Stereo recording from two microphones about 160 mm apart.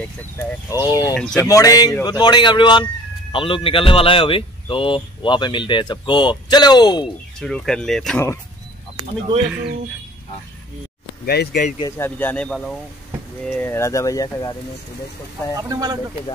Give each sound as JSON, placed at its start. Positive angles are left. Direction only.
{"t": 0.8, "sound": "speech", "side_deg": 20}
{"t": 7.3, "sound": "speech", "side_deg": 5}
{"t": 11.5, "sound": "speech", "side_deg": 65}
{"t": 12.0, "sound": "speech", "side_deg": 10}
{"t": 15.7, "sound": "speech", "side_deg": -20}